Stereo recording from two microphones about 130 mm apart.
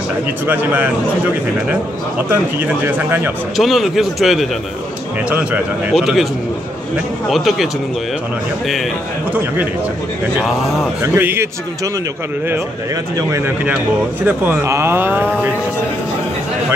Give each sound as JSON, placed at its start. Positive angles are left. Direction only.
{"t": 0.5, "sound": "speech", "side_deg": -15}
{"t": 2.2, "sound": "speech", "side_deg": -20}
{"t": 3.5, "sound": "speech", "side_deg": 0}
{"t": 5.3, "sound": "speech", "side_deg": -10}
{"t": 5.9, "sound": "speech", "side_deg": 0}
{"t": 7.2, "sound": "speech", "side_deg": 0}
{"t": 11.0, "sound": "speech", "side_deg": -15}
{"t": 13.3, "sound": "speech", "side_deg": -15}